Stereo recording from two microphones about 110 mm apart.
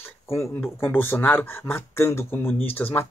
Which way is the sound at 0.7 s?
20° left (ahead or behind).